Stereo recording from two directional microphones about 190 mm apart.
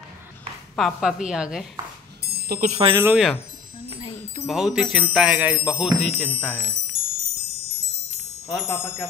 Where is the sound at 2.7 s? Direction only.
30° right (ahead or behind).